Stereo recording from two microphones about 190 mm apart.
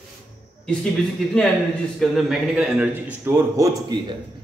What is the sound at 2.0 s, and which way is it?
A man's voice, centre (ahead or behind).